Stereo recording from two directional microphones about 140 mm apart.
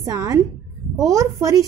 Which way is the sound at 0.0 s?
25° right (ahead or behind).